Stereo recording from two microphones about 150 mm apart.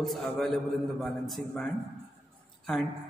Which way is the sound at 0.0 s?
Centre (ahead or behind).